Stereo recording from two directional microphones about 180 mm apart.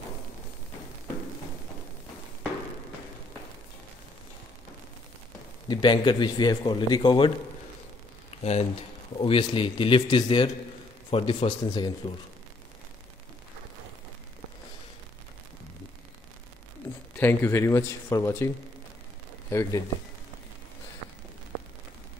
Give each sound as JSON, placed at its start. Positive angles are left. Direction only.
{"t": 5.7, "sound": "a man's voice", "side_deg": 25}
{"t": 8.3, "sound": "a sound", "side_deg": 35}
{"t": 9.1, "sound": "a man's voice", "side_deg": 30}
{"t": 17.2, "sound": "speech", "side_deg": 10}
{"t": 19.5, "sound": "speech", "side_deg": 15}